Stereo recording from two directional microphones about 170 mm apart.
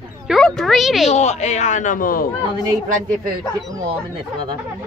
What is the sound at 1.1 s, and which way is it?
Speech, 40° left (ahead or behind).